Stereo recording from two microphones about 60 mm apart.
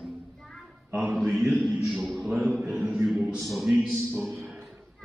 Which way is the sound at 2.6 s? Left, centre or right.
Right.